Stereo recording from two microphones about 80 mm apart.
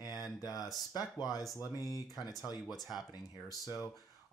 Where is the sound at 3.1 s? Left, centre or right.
Left.